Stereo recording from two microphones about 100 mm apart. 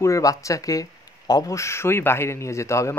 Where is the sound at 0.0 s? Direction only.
35° left (ahead or behind).